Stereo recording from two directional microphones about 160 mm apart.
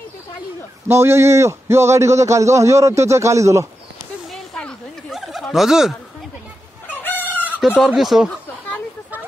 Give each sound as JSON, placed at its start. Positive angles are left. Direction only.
{"t": 0.8, "sound": "a man's voice", "side_deg": -15}
{"t": 4.3, "sound": "a sound", "side_deg": 5}
{"t": 6.9, "sound": "chicken", "side_deg": 10}
{"t": 7.8, "sound": "speech", "side_deg": 0}